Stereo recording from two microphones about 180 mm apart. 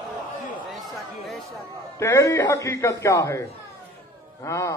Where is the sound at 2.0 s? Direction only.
15° left (ahead or behind).